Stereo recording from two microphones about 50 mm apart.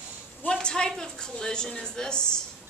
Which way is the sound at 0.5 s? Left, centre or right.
Centre.